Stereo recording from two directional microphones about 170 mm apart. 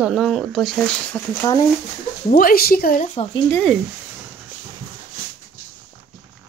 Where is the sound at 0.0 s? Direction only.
Centre (ahead or behind).